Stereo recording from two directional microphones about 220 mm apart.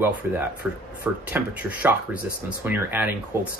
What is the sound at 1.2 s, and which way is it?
Speech, 5° right (ahead or behind).